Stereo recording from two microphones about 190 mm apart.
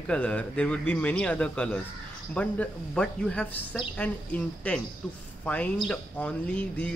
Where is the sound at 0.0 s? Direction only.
5° left (ahead or behind).